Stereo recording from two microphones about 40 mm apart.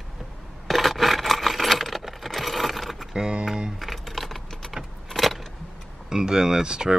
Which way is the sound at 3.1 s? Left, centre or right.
Right.